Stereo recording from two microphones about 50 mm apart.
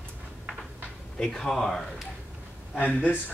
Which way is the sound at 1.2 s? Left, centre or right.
Centre.